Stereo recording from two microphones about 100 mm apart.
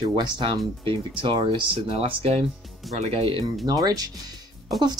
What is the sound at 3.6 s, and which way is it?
Speech, 40° right (ahead or behind).